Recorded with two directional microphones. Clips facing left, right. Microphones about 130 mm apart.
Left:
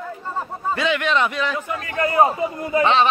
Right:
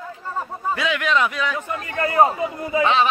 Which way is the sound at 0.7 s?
Centre (ahead or behind).